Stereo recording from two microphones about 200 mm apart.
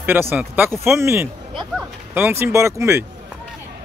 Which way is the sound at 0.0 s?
10° right (ahead or behind).